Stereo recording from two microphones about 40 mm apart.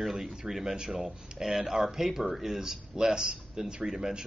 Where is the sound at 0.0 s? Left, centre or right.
Centre.